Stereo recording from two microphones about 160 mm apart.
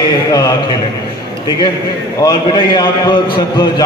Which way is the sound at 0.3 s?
20° left (ahead or behind).